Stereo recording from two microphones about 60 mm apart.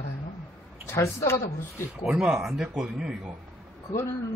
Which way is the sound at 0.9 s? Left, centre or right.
Left.